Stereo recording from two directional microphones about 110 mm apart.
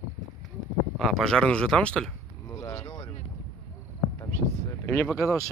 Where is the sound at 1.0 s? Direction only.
Centre (ahead or behind).